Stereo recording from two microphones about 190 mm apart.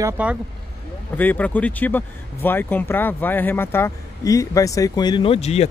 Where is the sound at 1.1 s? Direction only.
10° left (ahead or behind).